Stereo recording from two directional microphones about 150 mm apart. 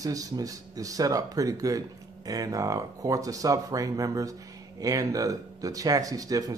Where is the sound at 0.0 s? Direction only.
25° right (ahead or behind).